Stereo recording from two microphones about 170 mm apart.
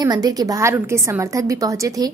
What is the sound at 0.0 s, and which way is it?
A woman's voice, 20° right (ahead or behind).